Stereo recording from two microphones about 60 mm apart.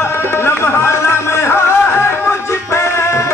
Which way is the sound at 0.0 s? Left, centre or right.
Left.